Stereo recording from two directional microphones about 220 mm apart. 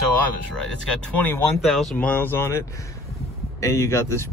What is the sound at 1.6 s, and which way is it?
Speech, centre (ahead or behind).